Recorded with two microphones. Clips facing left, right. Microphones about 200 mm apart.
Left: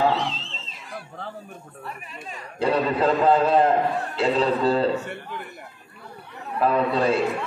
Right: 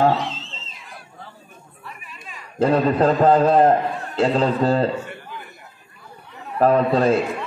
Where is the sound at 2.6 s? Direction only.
45° right (ahead or behind).